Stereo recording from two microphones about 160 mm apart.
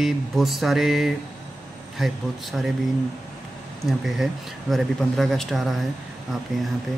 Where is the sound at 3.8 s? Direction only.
Centre (ahead or behind).